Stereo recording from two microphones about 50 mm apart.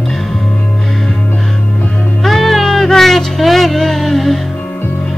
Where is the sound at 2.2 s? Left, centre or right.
Centre.